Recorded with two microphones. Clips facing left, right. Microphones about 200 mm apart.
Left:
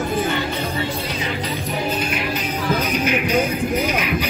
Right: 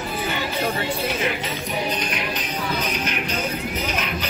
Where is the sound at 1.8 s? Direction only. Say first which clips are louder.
Left 3 dB; 5° left (ahead or behind).